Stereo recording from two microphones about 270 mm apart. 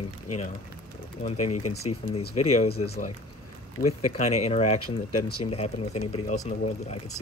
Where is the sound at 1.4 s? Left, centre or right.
Left.